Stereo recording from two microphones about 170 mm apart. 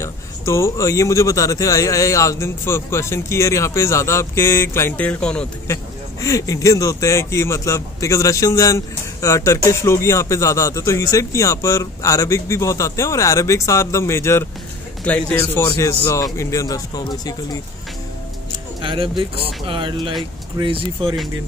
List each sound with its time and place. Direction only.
0.0 s a man's voice: 15° left (ahead or behind)
6.2 s a man's voice: 20° left (ahead or behind)
18.8 s speech: 30° right (ahead or behind)